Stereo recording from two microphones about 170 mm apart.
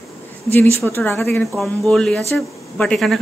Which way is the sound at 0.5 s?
15° left (ahead or behind).